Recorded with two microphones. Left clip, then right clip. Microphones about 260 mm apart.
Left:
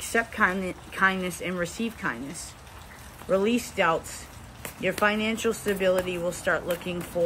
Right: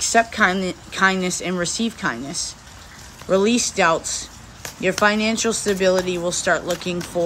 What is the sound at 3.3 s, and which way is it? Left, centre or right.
Speech, centre.